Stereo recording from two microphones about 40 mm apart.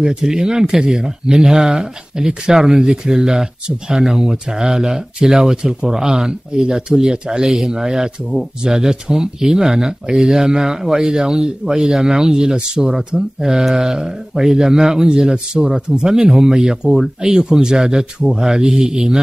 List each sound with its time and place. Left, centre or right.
0.0 s a man's voice: centre